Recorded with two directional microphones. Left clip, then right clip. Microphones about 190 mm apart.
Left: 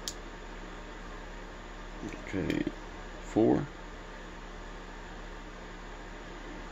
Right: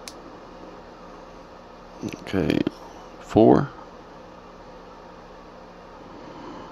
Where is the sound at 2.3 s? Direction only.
40° right (ahead or behind).